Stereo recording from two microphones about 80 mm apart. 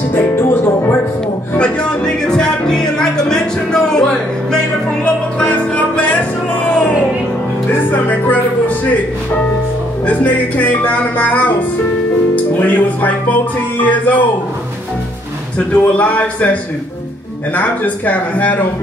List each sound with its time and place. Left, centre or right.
0.1 s music: left
1.6 s music: centre
7.9 s music: left
10.0 s music: centre
12.5 s music: left
15.7 s a man's voice: centre
17.6 s speech: centre